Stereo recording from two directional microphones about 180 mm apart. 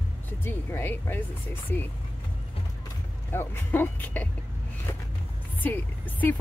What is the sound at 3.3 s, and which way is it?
Speech, 10° left (ahead or behind).